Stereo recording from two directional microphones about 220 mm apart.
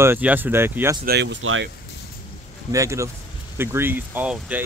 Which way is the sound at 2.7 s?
15° right (ahead or behind).